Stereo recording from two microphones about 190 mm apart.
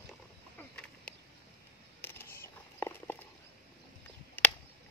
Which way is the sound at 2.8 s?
10° left (ahead or behind).